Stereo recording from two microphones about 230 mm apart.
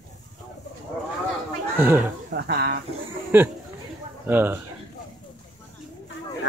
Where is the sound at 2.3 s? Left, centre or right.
Right.